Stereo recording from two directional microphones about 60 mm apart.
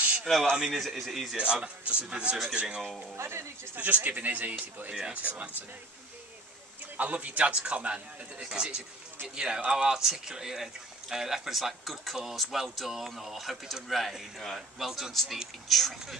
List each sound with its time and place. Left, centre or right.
0.6 s speech: centre
1.3 s a man's voice: centre
3.2 s speech: right
3.7 s a man's voice: right
7.0 s a man's voice: right; by 16.2 s centre